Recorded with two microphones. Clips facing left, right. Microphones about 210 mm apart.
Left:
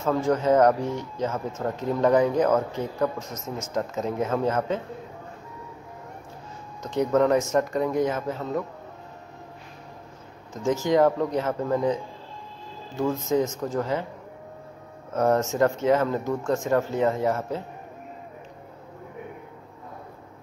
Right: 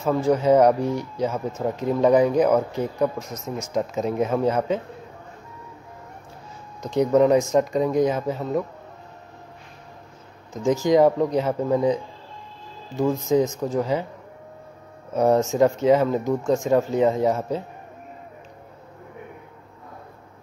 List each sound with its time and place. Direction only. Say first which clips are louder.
0.0 s speech: right 3 dB; 10° right (ahead or behind)
6.8 s speech: right 4 dB; 15° right (ahead or behind)
10.6 s speech: right 3 dB; 15° right (ahead or behind)
15.1 s speech: right 3 dB; 15° right (ahead or behind)